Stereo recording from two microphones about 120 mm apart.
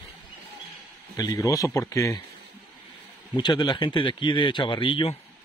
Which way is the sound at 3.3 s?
35° left (ahead or behind).